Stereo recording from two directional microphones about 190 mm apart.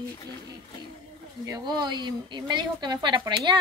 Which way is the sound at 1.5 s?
20° right (ahead or behind).